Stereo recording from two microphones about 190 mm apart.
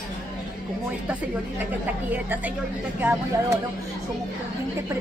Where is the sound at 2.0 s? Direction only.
10° right (ahead or behind).